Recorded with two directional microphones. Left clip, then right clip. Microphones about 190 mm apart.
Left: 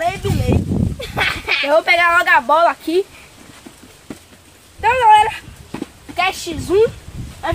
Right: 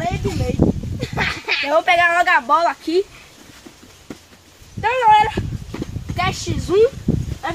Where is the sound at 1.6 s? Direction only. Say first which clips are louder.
Left 2 dB; 35° left (ahead or behind); by 3.0 s 15° left (ahead or behind).